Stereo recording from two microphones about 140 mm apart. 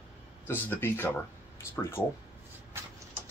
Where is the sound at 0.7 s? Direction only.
15° left (ahead or behind).